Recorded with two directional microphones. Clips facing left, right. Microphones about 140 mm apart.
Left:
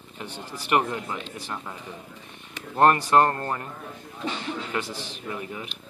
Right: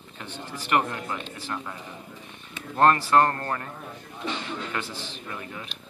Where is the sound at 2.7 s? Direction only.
15° left (ahead or behind).